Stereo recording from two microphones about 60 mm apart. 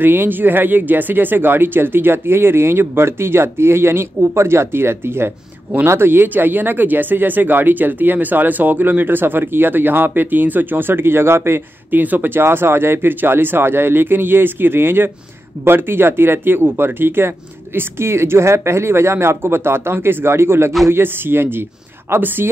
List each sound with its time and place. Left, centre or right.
0.0 s speech: right